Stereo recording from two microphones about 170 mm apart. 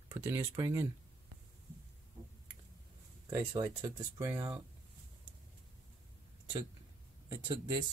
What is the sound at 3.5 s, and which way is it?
Speech, 20° right (ahead or behind).